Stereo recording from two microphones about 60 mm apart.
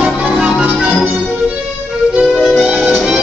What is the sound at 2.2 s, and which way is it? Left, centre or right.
Music, centre.